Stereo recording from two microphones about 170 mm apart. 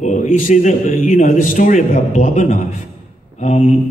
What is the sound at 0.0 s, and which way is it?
A man's voice, 45° left (ahead or behind).